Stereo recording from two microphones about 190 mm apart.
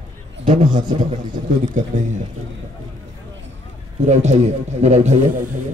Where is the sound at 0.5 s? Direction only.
40° right (ahead or behind).